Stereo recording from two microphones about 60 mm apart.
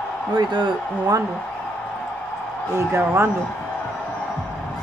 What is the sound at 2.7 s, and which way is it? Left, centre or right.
Speech, right.